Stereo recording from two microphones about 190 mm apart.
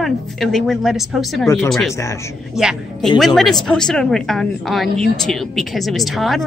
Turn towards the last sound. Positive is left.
turn(degrees=0)  # may be behind; listen again after turning